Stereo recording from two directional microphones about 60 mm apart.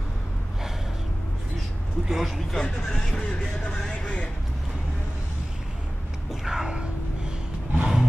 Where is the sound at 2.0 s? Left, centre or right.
Centre.